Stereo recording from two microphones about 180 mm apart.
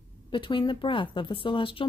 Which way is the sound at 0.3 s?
25° left (ahead or behind).